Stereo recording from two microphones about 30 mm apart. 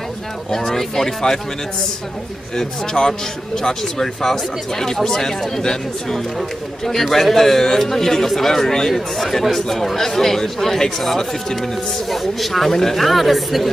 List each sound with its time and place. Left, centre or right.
0.5 s speech: centre
2.5 s speech: centre
12.1 s speech: centre